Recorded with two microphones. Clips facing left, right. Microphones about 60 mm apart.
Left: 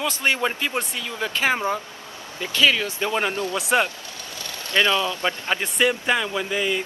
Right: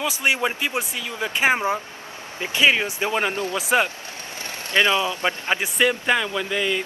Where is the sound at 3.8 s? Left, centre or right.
Right.